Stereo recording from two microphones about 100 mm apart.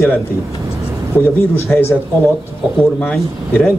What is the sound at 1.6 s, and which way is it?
Speech, 20° left (ahead or behind).